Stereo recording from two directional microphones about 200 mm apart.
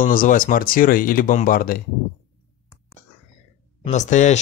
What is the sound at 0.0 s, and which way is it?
Speech, 40° left (ahead or behind).